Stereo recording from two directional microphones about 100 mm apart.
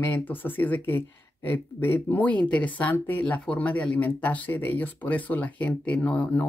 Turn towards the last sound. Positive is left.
turn(degrees=15)  # may be behind; listen again after turning